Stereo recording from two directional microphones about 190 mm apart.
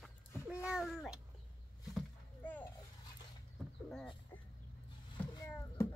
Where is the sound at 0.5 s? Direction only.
5° right (ahead or behind).